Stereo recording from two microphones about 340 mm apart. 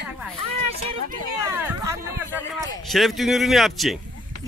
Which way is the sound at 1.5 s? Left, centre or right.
Centre.